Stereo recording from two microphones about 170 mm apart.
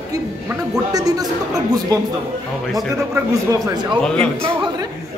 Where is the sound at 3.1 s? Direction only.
25° right (ahead or behind).